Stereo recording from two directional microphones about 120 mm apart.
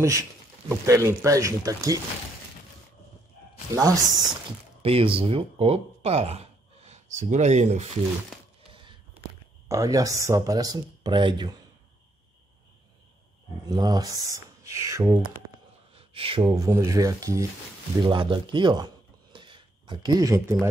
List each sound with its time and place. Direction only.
0.7 s speech: 25° right (ahead or behind)
3.7 s speech: 30° right (ahead or behind)
4.8 s speech: 50° right (ahead or behind); by 7.8 s 70° right (ahead or behind)
8.6 s a sound: 45° right (ahead or behind)
9.7 s speech: 30° right (ahead or behind)
13.7 s speech: 35° right (ahead or behind)
15.9 s a sound: 50° right (ahead or behind)
16.5 s speech: 30° right (ahead or behind)
18.0 s speech: 40° right (ahead or behind)
19.3 s a sound: 40° right (ahead or behind); by 20.5 s 25° right (ahead or behind)